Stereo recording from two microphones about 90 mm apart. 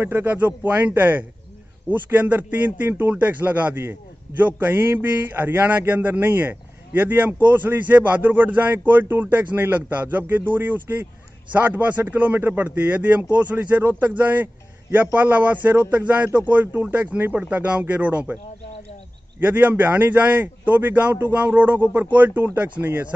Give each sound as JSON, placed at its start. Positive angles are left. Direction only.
{"t": 0.0, "sound": "speech", "side_deg": -20}
{"t": 19.4, "sound": "speech", "side_deg": -20}